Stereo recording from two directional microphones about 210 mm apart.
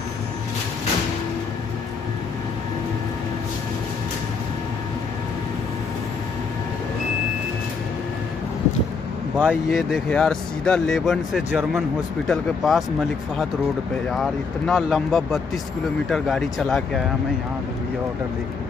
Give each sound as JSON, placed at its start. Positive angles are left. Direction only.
{"t": 9.4, "sound": "speech", "side_deg": 0}
{"t": 14.1, "sound": "speech", "side_deg": 0}